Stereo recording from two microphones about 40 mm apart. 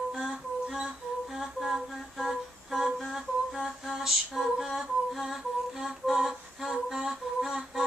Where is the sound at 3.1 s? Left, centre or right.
Centre.